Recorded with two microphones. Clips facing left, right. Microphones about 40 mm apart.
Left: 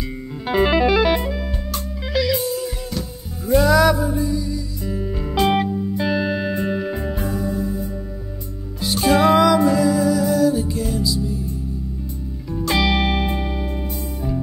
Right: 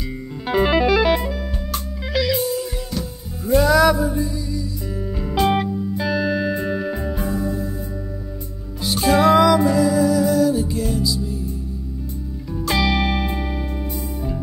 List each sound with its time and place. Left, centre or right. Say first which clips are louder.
0.5 s music: even; centre
1.7 s music: right 1 dB; centre
6.0 s music: right 2 dB; centre
7.2 s music: even; centre
8.8 s music: even; centre
12.7 s music: left 1 dB; centre